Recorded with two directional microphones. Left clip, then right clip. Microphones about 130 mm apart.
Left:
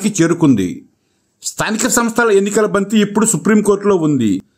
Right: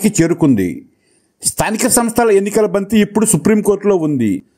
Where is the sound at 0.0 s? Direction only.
20° right (ahead or behind).